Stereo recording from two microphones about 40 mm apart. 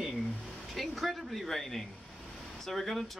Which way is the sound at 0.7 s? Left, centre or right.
Centre.